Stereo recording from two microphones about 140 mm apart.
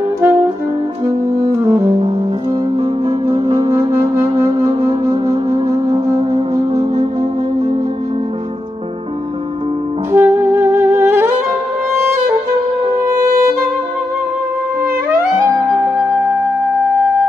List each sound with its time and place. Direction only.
3.4 s music: 30° right (ahead or behind)
3.7 s music: 20° right (ahead or behind)
6.1 s music: 30° right (ahead or behind)
10.1 s saxophone: 15° right (ahead or behind)
12.8 s music: 25° right (ahead or behind)